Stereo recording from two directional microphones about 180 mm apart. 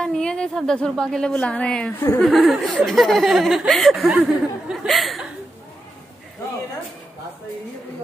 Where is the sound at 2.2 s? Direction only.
Centre (ahead or behind).